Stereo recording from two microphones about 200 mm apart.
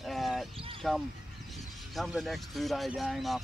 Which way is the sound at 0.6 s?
25° right (ahead or behind).